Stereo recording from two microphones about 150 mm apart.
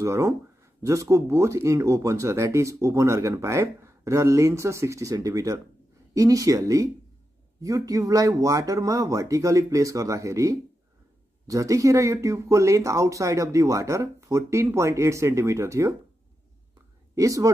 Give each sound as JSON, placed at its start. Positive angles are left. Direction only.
{"t": 0.0, "sound": "speech", "side_deg": -20}
{"t": 17.1, "sound": "speech", "side_deg": -20}